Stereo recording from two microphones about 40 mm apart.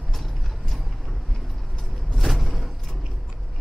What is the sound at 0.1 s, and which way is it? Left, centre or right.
Mechanisms, centre.